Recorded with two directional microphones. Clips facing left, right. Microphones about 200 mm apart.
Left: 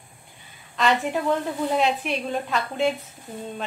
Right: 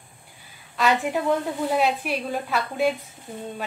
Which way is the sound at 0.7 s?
5° right (ahead or behind).